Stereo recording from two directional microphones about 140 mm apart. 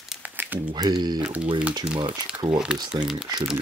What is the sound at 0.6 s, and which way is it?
Speech, 30° right (ahead or behind).